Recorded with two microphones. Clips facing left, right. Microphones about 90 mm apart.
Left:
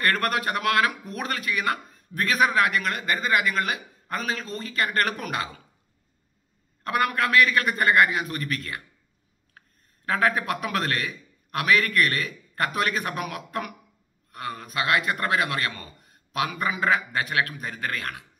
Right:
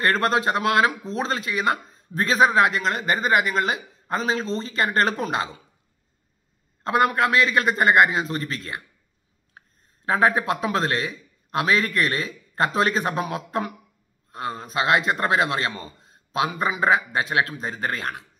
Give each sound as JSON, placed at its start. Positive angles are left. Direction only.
{"t": 0.0, "sound": "speech", "side_deg": -25}
{"t": 6.8, "sound": "speech", "side_deg": -25}
{"t": 9.6, "sound": "a sound", "side_deg": -20}
{"t": 10.0, "sound": "speech", "side_deg": -20}